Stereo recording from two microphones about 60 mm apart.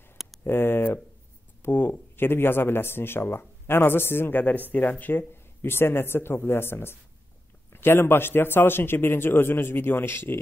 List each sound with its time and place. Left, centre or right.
0.4 s speech: left